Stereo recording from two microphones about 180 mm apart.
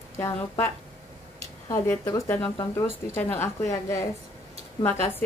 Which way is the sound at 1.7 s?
15° left (ahead or behind).